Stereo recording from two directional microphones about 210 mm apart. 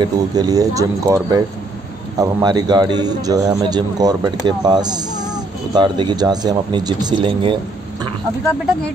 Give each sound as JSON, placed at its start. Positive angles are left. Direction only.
{"t": 0.0, "sound": "a man's voice", "side_deg": -20}